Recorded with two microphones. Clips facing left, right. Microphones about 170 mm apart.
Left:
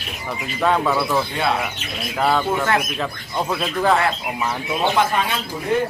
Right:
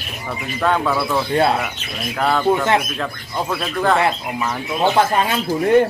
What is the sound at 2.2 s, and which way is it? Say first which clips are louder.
Speech: even; 5° left (ahead or behind).